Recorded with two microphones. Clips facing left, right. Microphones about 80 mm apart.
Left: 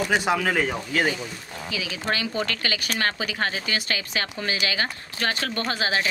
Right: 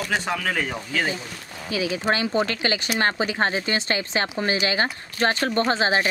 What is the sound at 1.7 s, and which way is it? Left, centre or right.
Speech, right.